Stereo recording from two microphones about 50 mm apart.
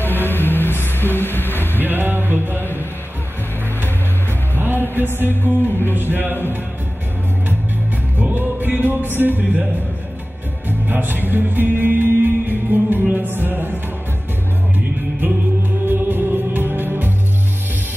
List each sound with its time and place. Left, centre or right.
0.0 s speech: left
1.8 s music: right
4.6 s music: right
8.2 s music: right
9.4 s a man's voice: right
10.7 s music: right
15.2 s music: right